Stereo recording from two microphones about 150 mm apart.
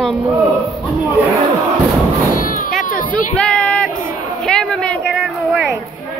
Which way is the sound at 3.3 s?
5° left (ahead or behind).